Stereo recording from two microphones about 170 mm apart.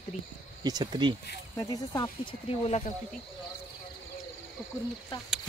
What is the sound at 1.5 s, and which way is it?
Speech, 20° left (ahead or behind).